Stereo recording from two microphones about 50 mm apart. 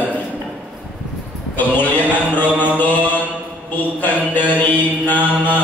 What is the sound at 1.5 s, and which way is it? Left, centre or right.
Mantra, left.